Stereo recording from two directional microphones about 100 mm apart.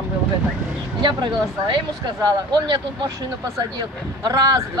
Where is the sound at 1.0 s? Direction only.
50° right (ahead or behind).